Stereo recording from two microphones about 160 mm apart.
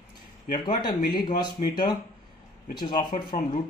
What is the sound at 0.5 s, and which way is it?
Speech, 30° left (ahead or behind).